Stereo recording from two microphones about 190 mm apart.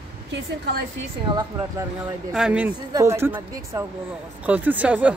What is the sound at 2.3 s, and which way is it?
Speech, 5° right (ahead or behind).